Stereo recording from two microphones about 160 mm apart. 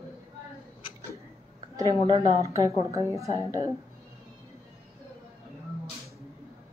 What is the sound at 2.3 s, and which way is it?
A woman's voice, 20° right (ahead or behind).